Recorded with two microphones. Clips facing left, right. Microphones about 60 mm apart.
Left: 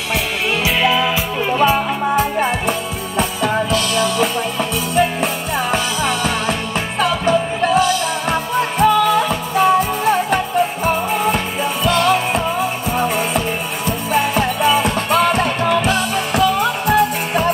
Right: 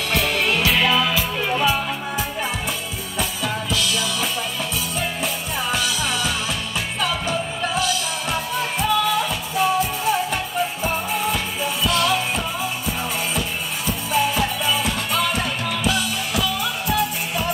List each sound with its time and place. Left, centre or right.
0.7 s music: centre
1.6 s music: left
14.1 s music: left